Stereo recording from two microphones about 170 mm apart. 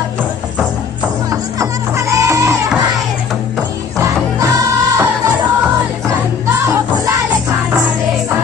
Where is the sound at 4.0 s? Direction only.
20° right (ahead or behind).